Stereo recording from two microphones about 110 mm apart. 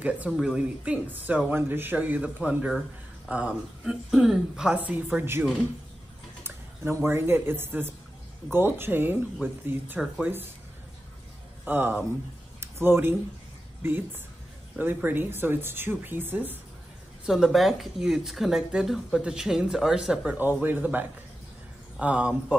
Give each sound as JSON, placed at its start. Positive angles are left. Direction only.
{"t": 0.0, "sound": "a woman's voice", "side_deg": -10}
{"t": 6.4, "sound": "a woman's voice", "side_deg": -20}
{"t": 9.9, "sound": "speech", "side_deg": -5}
{"t": 11.6, "sound": "speech", "side_deg": -15}
{"t": 12.5, "sound": "a sound", "side_deg": -20}
{"t": 15.0, "sound": "a woman's voice", "side_deg": -15}
{"t": 17.3, "sound": "speech", "side_deg": 0}
{"t": 20.3, "sound": "a woman's voice", "side_deg": -15}